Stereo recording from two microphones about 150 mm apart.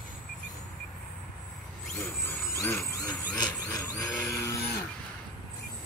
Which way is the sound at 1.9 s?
15° left (ahead or behind).